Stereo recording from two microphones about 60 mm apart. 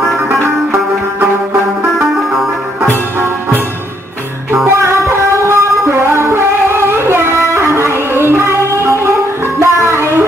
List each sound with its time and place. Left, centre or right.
4.6 s music: right